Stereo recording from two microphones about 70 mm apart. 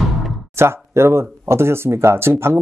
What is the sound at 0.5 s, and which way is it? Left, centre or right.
Speech, right.